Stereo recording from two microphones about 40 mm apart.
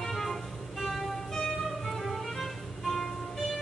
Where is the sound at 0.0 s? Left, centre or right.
Centre.